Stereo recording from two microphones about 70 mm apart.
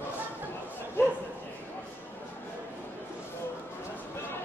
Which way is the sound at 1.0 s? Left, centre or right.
Left.